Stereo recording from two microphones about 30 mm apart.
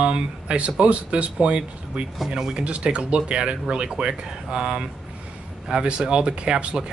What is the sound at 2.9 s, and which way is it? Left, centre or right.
Speech, right.